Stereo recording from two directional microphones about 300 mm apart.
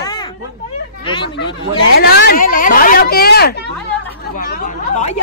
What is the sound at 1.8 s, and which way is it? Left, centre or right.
Speech, left.